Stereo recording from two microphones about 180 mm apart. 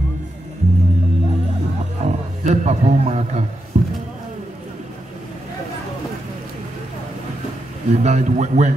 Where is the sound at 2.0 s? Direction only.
40° right (ahead or behind).